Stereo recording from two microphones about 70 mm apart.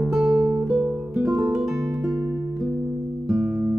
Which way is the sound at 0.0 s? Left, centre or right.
Centre.